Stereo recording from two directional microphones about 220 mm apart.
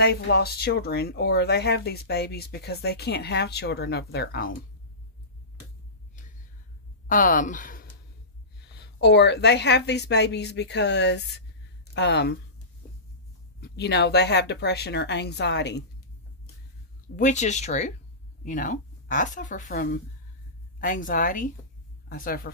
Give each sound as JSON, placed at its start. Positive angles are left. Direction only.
{"t": 0.0, "sound": "speech", "side_deg": 45}
{"t": 7.1, "sound": "speech", "side_deg": 35}
{"t": 13.6, "sound": "speech", "side_deg": 50}
{"t": 17.2, "sound": "a woman's voice", "side_deg": 35}